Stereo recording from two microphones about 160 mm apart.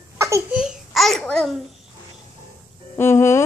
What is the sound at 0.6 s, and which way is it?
A child's voice, centre (ahead or behind).